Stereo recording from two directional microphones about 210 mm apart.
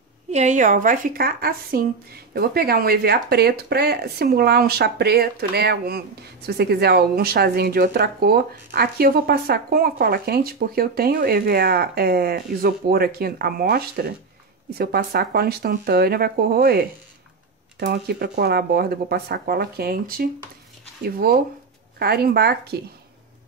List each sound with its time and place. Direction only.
0.3 s a woman's voice: 35° right (ahead or behind)